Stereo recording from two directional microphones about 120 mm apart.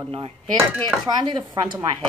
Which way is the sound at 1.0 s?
40° right (ahead or behind).